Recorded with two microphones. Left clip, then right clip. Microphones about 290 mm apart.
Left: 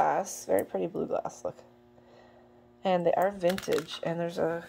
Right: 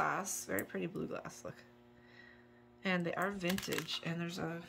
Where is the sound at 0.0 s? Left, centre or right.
Centre.